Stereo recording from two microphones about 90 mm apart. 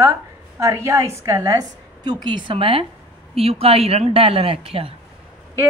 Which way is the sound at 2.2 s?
70° right (ahead or behind).